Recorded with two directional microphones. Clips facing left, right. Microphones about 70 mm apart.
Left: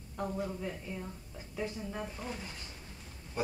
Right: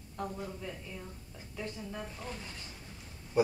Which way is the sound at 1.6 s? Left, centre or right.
Centre.